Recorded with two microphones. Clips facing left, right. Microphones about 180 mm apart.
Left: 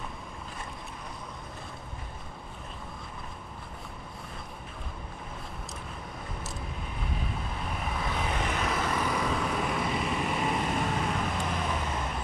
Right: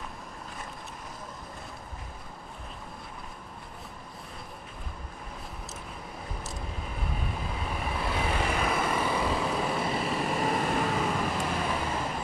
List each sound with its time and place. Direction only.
8.0 s vehicle: 10° right (ahead or behind)
9.1 s vehicle: 30° right (ahead or behind)
9.9 s vehicle: centre (ahead or behind)
10.2 s vehicle: 35° right (ahead or behind)
10.5 s vehicle: centre (ahead or behind)